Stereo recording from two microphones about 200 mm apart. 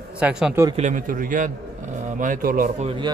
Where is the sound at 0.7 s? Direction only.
40° right (ahead or behind).